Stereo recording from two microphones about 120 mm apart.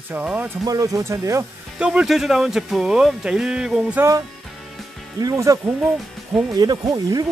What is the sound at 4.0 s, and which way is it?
Speech, 25° right (ahead or behind).